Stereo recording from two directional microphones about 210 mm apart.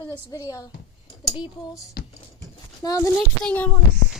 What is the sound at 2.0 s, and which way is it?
Music, 45° left (ahead or behind).